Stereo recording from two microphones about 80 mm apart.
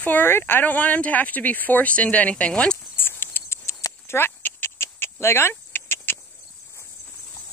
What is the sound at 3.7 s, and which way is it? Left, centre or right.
Dog, left.